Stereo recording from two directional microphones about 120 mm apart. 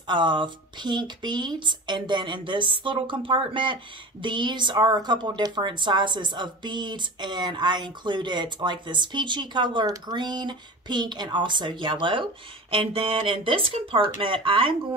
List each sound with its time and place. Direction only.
0.1 s a woman's voice: 40° right (ahead or behind)